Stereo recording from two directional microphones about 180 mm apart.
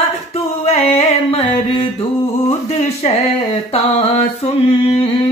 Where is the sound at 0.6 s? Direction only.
35° left (ahead or behind).